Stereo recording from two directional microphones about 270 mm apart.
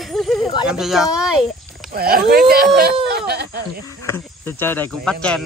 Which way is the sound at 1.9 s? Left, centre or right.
Right.